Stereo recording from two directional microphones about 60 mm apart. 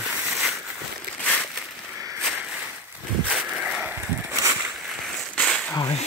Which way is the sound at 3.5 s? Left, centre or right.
Centre.